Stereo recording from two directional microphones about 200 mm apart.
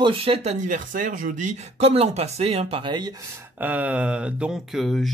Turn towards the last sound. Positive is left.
turn(degrees=0)  # may be behind; listen again after turning